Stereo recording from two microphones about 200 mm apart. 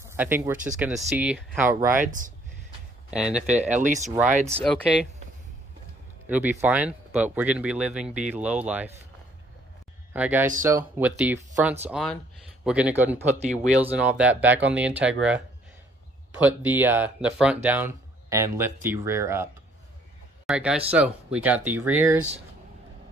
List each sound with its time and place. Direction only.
0.0 s speech: 10° right (ahead or behind)
2.0 s speech: 40° right (ahead or behind)
3.1 s speech: 5° right (ahead or behind)
3.8 s speech: 40° right (ahead or behind)
6.2 s speech: 10° right (ahead or behind)
10.1 s speech: 10° right (ahead or behind)